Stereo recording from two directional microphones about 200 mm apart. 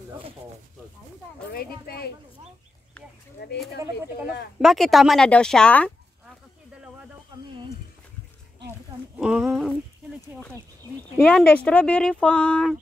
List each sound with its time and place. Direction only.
1.5 s speech: 50° left (ahead or behind)
3.4 s speech: 55° left (ahead or behind)
4.6 s speech: centre (ahead or behind)
9.2 s speech: 5° right (ahead or behind)
11.1 s speech: 5° left (ahead or behind)